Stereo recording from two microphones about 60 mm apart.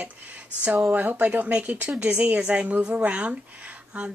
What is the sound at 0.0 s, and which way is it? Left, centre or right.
Speech, right.